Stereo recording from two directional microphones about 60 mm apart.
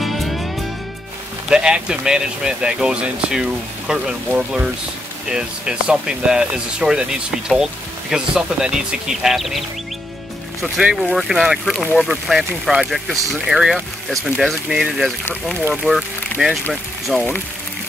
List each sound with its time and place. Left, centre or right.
0.0 s music: centre
1.5 s speech: centre
10.8 s speech: centre
17.1 s speech: right